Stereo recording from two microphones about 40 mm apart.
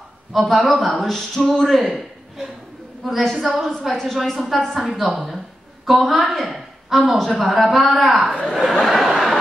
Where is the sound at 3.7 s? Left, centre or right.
Centre.